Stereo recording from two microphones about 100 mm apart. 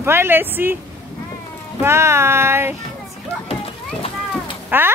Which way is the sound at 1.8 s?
25° right (ahead or behind).